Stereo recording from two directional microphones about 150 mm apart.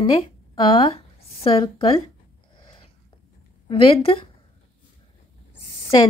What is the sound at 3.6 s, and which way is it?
Speech, 35° left (ahead or behind).